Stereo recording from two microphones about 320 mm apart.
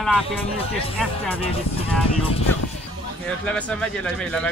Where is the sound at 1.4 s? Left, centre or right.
Centre.